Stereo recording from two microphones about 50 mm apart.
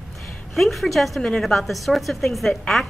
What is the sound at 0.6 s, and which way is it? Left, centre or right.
A woman's voice, centre.